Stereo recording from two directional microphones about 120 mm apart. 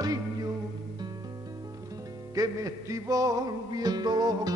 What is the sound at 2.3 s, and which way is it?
Music, 30° right (ahead or behind).